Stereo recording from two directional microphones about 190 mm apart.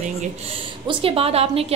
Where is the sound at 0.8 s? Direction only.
30° right (ahead or behind).